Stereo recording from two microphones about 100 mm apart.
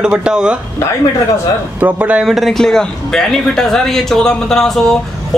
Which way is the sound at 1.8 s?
15° right (ahead or behind).